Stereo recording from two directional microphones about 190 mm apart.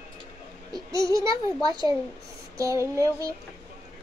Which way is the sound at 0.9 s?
15° right (ahead or behind).